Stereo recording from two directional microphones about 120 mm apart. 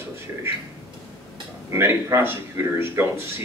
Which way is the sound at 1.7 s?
20° right (ahead or behind).